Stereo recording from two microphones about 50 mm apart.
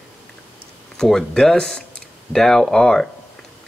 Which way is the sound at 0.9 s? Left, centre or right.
Centre.